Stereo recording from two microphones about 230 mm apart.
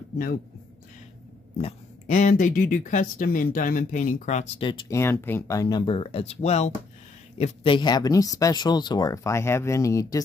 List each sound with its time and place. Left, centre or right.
1.6 s speech: left